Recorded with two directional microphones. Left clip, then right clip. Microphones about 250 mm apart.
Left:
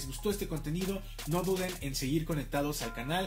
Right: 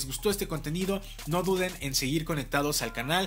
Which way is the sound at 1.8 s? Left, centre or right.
Centre.